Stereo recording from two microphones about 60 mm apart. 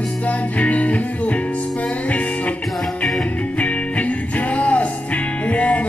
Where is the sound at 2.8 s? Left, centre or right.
Centre.